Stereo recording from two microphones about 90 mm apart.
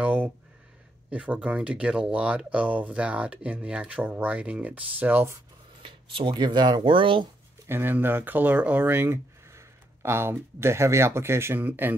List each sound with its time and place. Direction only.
0.0 s a sound: 15° right (ahead or behind)
1.1 s speech: 15° right (ahead or behind)
5.8 s speech: 75° right (ahead or behind)
7.6 s speech: 25° right (ahead or behind)